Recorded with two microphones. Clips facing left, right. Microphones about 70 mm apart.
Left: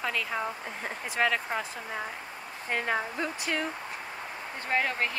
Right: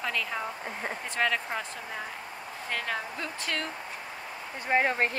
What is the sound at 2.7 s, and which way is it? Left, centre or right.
Speech, left.